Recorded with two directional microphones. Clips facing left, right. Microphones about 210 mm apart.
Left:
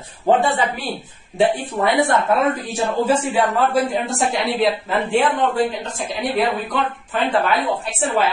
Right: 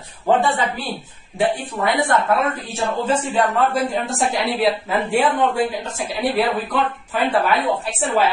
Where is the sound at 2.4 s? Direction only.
10° left (ahead or behind).